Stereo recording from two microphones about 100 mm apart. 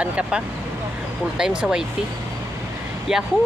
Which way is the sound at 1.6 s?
10° right (ahead or behind).